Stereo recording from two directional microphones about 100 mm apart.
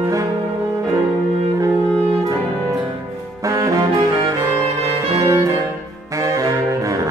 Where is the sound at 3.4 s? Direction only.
30° right (ahead or behind).